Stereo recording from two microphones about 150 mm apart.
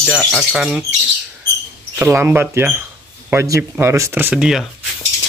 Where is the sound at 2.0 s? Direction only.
15° right (ahead or behind).